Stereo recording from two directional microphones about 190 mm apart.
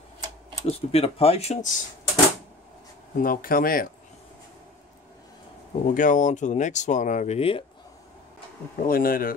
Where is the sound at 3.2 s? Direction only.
50° left (ahead or behind).